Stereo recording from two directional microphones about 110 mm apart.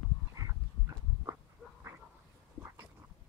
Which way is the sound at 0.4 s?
30° right (ahead or behind).